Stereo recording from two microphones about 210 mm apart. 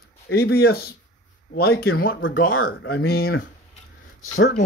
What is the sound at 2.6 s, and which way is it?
Speech, 50° left (ahead or behind).